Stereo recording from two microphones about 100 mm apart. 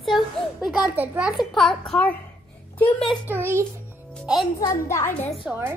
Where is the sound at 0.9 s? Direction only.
20° right (ahead or behind).